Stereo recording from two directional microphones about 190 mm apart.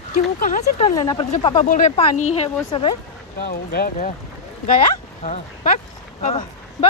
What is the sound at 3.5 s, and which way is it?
Speech, 55° left (ahead or behind).